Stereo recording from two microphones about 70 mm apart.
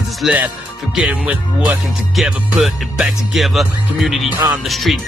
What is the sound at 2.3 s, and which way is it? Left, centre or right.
Music, centre.